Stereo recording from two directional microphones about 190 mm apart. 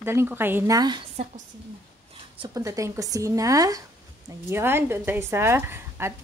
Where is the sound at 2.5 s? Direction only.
15° right (ahead or behind).